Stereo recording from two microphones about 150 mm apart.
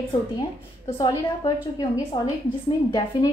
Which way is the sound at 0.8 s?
35° left (ahead or behind).